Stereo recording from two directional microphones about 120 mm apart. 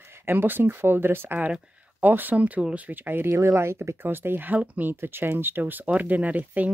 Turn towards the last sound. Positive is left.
turn(degrees=-10)  # may be behind; listen again after turning